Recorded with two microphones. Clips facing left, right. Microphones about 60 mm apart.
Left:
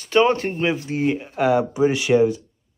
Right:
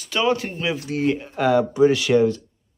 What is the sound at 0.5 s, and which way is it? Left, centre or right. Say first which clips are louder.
Speech: left 2 dB; left.